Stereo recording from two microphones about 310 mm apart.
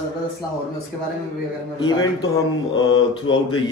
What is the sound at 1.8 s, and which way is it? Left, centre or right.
Speech, centre.